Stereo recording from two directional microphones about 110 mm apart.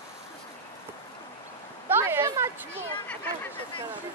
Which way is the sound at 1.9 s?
20° right (ahead or behind).